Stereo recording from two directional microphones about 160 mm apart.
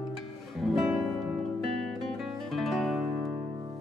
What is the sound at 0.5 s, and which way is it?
Music, centre (ahead or behind).